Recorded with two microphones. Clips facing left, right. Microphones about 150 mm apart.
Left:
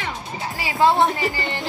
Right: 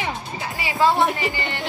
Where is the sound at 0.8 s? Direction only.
20° left (ahead or behind).